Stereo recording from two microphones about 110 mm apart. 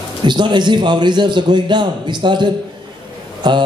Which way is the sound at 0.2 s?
45° right (ahead or behind).